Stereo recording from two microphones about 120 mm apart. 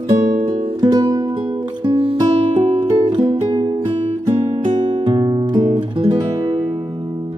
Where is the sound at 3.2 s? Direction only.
30° right (ahead or behind).